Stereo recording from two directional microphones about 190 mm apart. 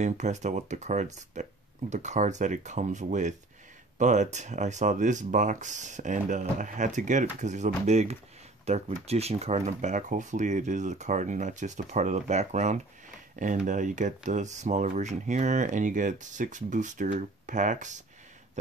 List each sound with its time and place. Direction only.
0.0 s speech: 40° right (ahead or behind)